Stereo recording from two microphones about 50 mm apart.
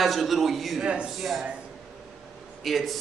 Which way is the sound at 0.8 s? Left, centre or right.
Right.